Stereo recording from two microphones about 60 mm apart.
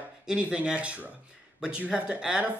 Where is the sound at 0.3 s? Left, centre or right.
Centre.